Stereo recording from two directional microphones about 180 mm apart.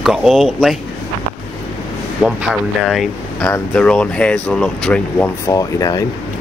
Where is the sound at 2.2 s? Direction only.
Centre (ahead or behind).